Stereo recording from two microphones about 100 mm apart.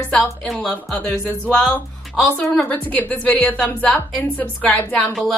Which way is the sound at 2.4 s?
10° left (ahead or behind).